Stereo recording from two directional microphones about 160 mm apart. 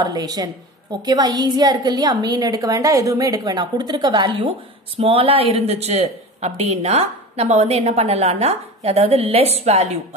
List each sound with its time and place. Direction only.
0.0 s a woman's voice: 25° right (ahead or behind); by 9.9 s 40° right (ahead or behind)